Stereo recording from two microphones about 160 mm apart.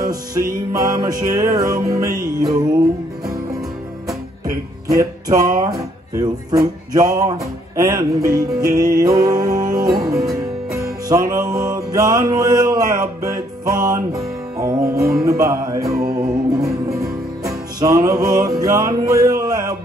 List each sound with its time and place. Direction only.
0.0 s music: 20° right (ahead or behind)
4.5 s music: 20° right (ahead or behind)
5.6 s guitar: 25° right (ahead or behind)
6.9 s music: 20° right (ahead or behind)
12.5 s a sound: 25° right (ahead or behind)
12.9 s music: 20° right (ahead or behind)